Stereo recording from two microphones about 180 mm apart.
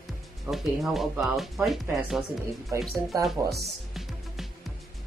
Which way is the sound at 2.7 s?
15° right (ahead or behind).